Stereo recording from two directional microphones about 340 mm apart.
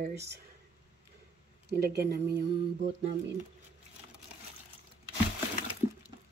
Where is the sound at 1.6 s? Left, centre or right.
Right.